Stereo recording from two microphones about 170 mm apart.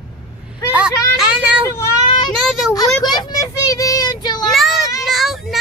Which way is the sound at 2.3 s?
Centre (ahead or behind).